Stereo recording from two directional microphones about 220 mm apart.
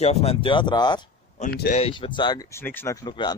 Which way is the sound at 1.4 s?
40° left (ahead or behind).